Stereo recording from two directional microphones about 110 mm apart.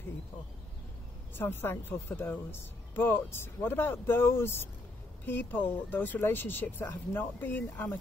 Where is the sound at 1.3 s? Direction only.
20° left (ahead or behind).